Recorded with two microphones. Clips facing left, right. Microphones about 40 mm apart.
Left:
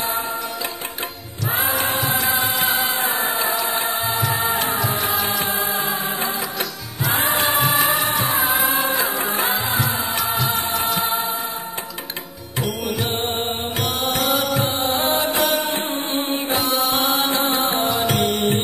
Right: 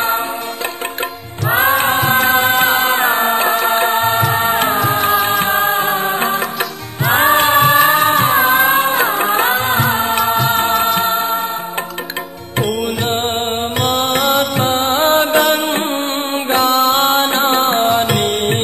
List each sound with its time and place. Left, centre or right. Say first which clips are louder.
1.7 s music: right 7 dB; right
12.5 s music: right 6 dB; right